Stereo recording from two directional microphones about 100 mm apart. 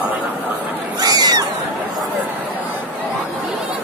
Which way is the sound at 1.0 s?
40° right (ahead or behind).